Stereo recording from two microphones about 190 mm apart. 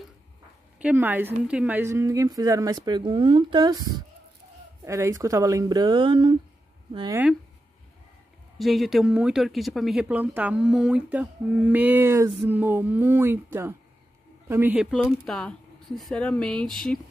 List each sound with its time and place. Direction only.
0.7 s speech: 10° right (ahead or behind)
8.5 s speech: centre (ahead or behind)